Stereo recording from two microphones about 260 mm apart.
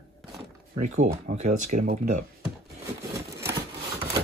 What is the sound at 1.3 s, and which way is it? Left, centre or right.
Speech, right.